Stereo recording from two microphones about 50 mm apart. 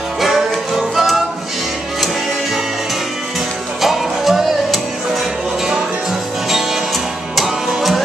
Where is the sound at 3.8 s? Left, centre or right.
Centre.